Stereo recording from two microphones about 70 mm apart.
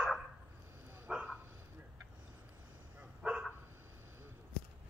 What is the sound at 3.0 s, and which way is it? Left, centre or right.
Bow-wow, centre.